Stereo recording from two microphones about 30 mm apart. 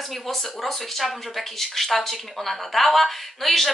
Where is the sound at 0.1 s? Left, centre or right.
Centre.